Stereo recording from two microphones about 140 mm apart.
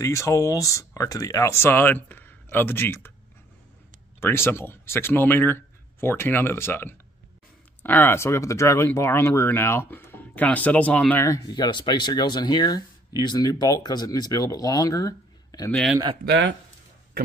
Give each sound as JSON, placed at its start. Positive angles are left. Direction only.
{"t": 0.0, "sound": "speech", "side_deg": 20}
{"t": 4.2, "sound": "speech", "side_deg": 15}
{"t": 11.2, "sound": "speech", "side_deg": 25}